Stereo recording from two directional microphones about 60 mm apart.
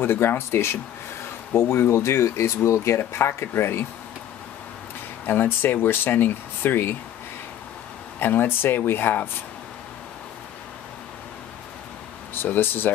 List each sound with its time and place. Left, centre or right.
0.0 s speech: left
5.2 s speech: left
8.2 s speech: left
12.4 s speech: left